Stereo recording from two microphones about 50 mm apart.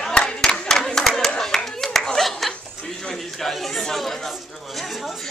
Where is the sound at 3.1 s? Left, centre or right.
Centre.